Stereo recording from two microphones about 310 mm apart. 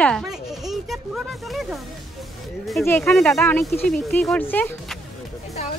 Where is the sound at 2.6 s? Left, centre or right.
Centre.